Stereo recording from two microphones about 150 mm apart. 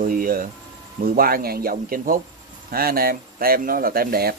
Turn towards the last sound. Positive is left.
turn(degrees=-85)